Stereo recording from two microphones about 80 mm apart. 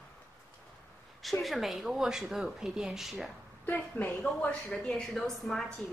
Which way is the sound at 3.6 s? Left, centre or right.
Centre.